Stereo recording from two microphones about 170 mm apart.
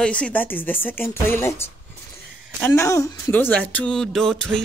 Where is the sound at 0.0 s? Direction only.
5° left (ahead or behind).